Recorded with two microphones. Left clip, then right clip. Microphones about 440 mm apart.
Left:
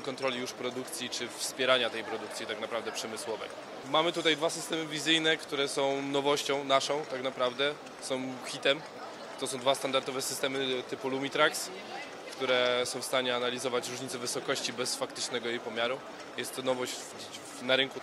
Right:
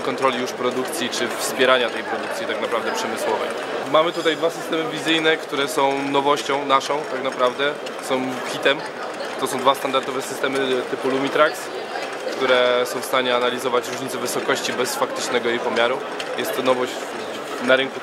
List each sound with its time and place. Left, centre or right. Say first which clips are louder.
0.0 s a man's voice: right 13 dB; left